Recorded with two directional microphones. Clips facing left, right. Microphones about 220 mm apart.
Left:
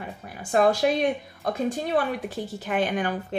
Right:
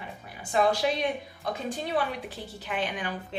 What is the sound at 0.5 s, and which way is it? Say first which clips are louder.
A woman's voice: left 4 dB; 50° left (ahead or behind).